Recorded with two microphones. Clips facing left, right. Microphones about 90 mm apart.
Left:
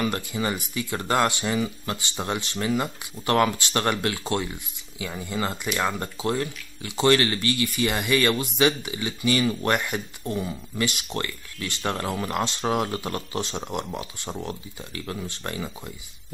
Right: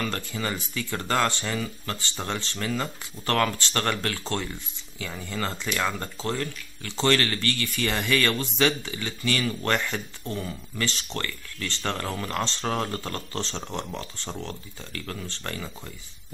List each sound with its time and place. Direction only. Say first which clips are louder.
0.0 s speech: left 4 dB; 15° left (ahead or behind)